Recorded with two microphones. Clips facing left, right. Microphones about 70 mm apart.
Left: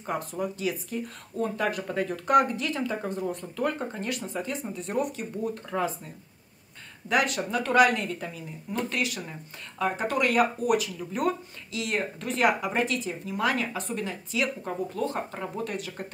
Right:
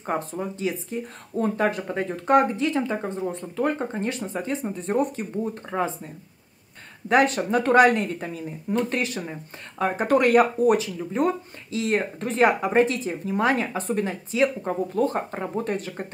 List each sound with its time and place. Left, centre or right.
0.0 s speech: right
7.1 s speech: right